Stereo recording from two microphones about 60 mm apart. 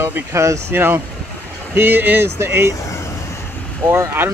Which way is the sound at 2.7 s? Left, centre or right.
Left.